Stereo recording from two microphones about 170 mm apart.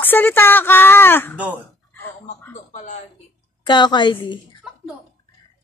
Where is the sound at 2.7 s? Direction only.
40° left (ahead or behind).